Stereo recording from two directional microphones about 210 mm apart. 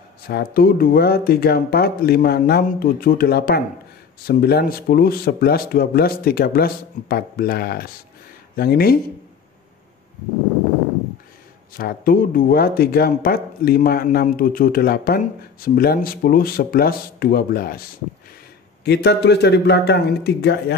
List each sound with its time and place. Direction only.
0.3 s speech: 45° left (ahead or behind)
11.7 s speech: 45° left (ahead or behind)
18.9 s speech: 50° left (ahead or behind)